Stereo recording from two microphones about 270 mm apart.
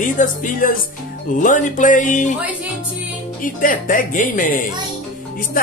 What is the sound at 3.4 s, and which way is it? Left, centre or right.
A woman's voice, left.